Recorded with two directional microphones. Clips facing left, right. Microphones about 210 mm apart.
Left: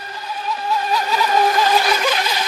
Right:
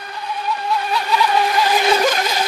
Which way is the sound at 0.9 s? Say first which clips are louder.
Right 1 dB; 40° left (ahead or behind).